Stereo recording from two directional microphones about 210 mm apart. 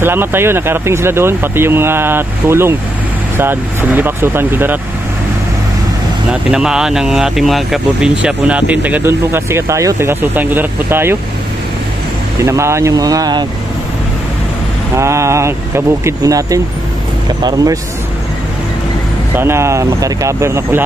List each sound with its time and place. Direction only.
0.0 s speech: 10° right (ahead or behind)
6.5 s speech: 5° right (ahead or behind)
12.4 s speech: 15° right (ahead or behind)
15.0 s speech: 15° right (ahead or behind)
19.3 s speech: 10° right (ahead or behind)